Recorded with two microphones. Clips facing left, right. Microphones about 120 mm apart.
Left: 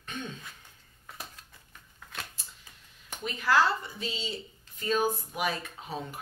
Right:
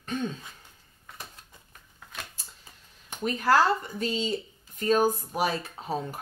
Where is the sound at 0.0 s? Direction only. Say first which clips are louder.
Right 8 dB; 35° right (ahead or behind).